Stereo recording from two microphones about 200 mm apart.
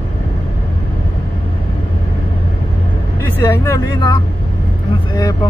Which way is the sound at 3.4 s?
15° left (ahead or behind).